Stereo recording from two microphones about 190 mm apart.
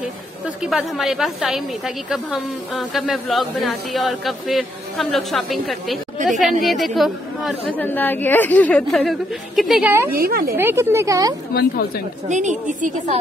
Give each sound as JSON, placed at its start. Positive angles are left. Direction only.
{"t": 0.6, "sound": "a woman's voice", "side_deg": -5}
{"t": 10.1, "sound": "speech", "side_deg": -50}
{"t": 10.5, "sound": "speech", "side_deg": -15}
{"t": 11.5, "sound": "a woman's voice", "side_deg": 50}
{"t": 12.3, "sound": "a woman's voice", "side_deg": -40}